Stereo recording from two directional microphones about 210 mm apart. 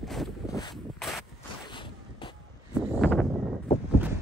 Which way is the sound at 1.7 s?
25° left (ahead or behind).